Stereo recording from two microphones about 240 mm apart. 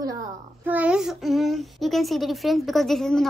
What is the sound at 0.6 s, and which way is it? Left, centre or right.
A child's voice, centre.